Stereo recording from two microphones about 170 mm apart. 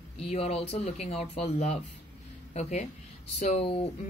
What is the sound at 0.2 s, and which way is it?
A woman's voice, 35° left (ahead or behind).